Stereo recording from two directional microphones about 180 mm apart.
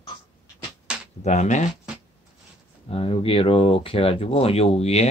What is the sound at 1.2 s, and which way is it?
Speech, 40° left (ahead or behind).